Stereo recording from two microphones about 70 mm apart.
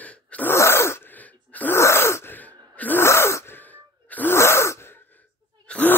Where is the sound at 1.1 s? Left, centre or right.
Left.